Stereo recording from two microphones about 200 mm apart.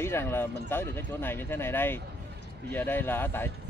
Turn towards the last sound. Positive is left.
turn(degrees=10)  # may be behind; listen again after turning